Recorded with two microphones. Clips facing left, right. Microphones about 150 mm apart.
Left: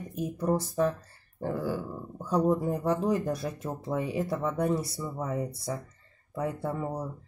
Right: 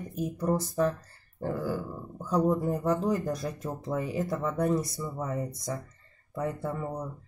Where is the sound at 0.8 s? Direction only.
10° left (ahead or behind).